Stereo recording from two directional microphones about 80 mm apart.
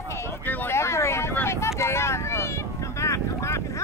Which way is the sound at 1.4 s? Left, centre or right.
Left.